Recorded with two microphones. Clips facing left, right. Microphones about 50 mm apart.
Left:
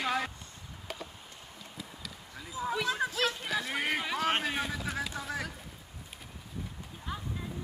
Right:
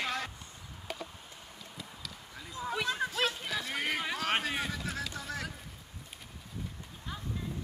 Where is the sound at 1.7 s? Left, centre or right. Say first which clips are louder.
Left 1 dB; centre.